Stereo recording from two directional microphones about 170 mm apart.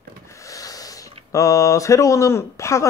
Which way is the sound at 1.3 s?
20° left (ahead or behind).